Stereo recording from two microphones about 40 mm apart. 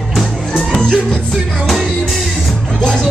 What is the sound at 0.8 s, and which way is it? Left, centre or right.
Music, centre.